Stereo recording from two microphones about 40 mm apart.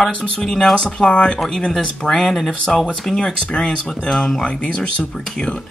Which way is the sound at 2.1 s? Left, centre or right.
Centre.